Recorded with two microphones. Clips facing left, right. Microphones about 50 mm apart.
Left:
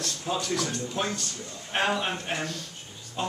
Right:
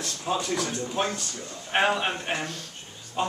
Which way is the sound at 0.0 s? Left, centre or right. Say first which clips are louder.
Right 2 dB; centre.